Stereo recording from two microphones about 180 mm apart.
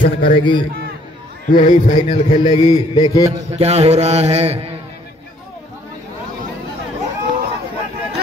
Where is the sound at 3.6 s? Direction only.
35° right (ahead or behind).